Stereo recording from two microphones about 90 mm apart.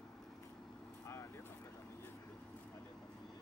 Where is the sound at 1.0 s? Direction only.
30° left (ahead or behind).